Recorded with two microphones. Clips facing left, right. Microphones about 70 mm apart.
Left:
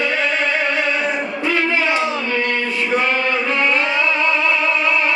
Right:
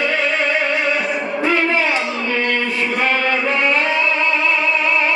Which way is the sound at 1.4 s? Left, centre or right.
Right.